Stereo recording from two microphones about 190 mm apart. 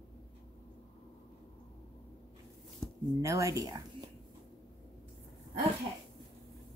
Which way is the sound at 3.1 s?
15° right (ahead or behind).